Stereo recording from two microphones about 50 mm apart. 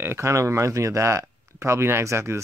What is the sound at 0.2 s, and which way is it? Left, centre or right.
Speech, right.